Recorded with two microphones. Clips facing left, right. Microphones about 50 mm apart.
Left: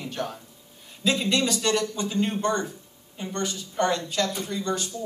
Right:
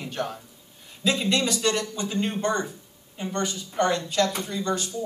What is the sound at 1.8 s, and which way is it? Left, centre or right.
Speech, centre.